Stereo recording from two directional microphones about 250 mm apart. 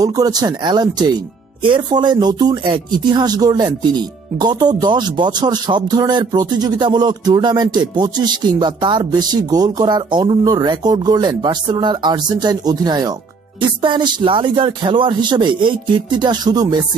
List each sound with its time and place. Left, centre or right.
0.0 s speech: centre